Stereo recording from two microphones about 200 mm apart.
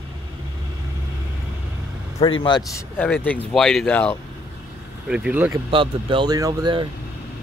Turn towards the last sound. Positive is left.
turn(degrees=-20)  # may be behind; listen again after turning